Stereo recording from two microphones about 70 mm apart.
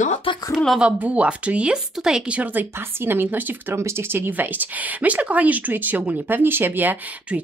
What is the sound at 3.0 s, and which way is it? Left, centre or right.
Speech, right.